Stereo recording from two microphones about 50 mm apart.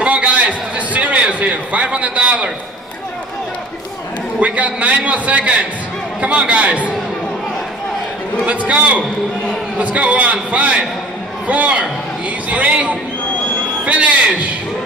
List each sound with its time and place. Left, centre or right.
0.0 s a sound: right
1.4 s a man's voice: right
4.4 s a man's voice: right
8.5 s a man's voice: right